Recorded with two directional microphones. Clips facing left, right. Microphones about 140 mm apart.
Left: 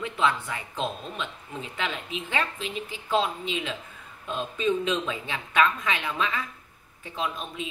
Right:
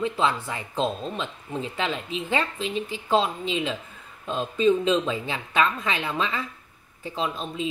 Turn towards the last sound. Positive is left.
turn(degrees=-30)  # may be behind; listen again after turning